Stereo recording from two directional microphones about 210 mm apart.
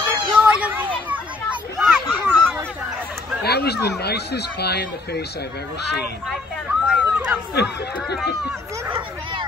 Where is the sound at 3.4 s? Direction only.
50° left (ahead or behind).